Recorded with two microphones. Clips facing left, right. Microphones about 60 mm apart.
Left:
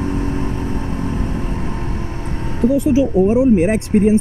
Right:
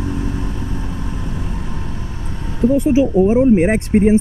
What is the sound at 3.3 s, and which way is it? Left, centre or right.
Speech, right.